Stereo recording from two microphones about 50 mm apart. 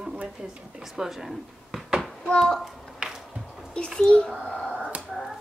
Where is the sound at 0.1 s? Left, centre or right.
Right; by 1.9 s centre.